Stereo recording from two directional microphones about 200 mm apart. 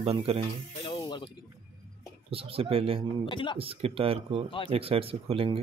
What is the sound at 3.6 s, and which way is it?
Speech, 30° right (ahead or behind).